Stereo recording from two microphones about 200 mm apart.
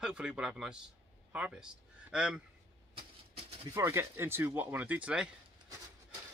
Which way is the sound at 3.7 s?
10° right (ahead or behind).